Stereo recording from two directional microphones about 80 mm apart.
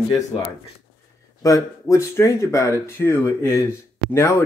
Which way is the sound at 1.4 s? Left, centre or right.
Left.